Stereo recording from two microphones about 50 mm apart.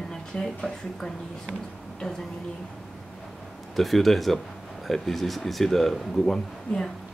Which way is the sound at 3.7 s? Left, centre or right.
Centre.